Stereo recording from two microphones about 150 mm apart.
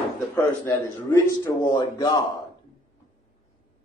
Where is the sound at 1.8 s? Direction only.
25° left (ahead or behind).